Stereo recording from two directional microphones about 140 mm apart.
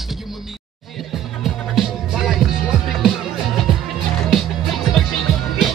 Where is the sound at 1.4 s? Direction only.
Centre (ahead or behind).